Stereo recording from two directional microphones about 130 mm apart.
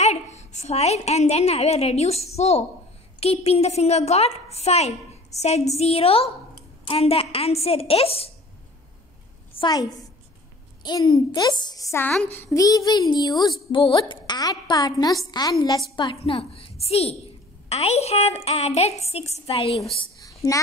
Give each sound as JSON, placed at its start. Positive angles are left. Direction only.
{"t": 0.0, "sound": "a woman's voice", "side_deg": 60}
{"t": 9.5, "sound": "a woman's voice", "side_deg": 35}
{"t": 16.0, "sound": "a woman's voice", "side_deg": 40}
{"t": 20.2, "sound": "a sound", "side_deg": 25}